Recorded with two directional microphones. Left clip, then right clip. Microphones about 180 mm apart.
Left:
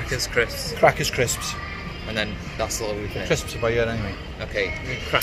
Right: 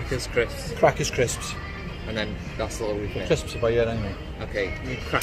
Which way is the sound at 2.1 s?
30° right (ahead or behind).